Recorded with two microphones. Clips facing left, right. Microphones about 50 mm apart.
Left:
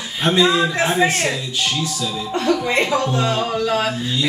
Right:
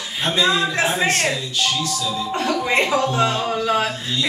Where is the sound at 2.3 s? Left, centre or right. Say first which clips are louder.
Left 3 dB; centre.